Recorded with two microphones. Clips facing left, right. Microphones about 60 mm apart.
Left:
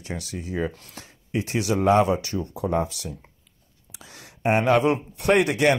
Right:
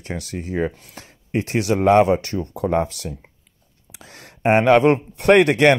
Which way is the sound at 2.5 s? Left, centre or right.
Right.